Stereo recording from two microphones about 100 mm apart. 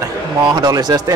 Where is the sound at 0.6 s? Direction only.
45° right (ahead or behind).